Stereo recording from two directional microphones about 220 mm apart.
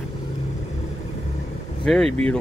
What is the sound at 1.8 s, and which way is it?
Speech, 5° left (ahead or behind).